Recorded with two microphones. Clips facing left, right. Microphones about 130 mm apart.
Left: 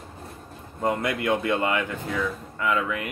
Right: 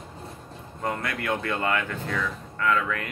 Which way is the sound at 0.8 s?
20° left (ahead or behind).